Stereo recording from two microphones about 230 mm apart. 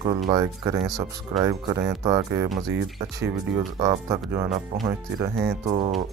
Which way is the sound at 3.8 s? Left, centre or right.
Centre.